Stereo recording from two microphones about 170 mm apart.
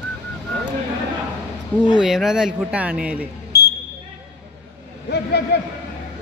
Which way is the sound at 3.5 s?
70° left (ahead or behind).